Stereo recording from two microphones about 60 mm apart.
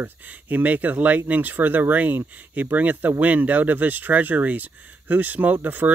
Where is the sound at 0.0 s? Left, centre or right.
Right.